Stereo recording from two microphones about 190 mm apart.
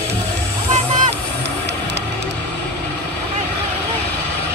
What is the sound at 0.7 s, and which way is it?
Vehicle, 40° right (ahead or behind).